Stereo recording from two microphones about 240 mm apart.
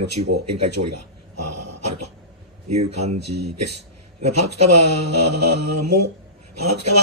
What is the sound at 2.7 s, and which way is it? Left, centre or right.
A man's voice, right.